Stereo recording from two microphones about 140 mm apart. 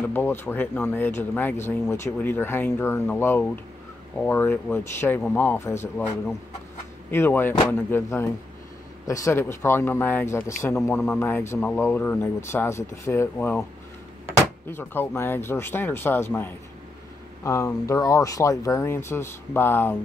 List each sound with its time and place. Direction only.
0.1 s speech: 15° left (ahead or behind)
7.1 s speech: 15° left (ahead or behind)